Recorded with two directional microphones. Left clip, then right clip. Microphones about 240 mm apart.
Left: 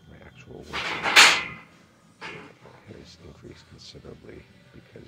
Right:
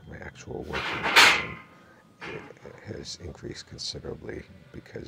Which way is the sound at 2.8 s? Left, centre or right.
Right.